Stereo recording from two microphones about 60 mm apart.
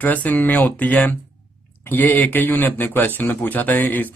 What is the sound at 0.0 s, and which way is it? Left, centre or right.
Speech, left.